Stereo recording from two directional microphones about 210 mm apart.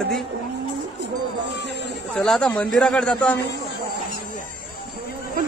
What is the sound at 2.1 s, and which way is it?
Speech, 5° left (ahead or behind).